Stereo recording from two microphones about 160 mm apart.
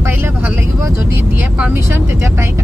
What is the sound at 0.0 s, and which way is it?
Vehicle, 15° right (ahead or behind).